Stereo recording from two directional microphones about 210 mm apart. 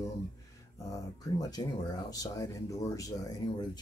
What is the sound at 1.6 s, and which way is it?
Speech, 15° left (ahead or behind).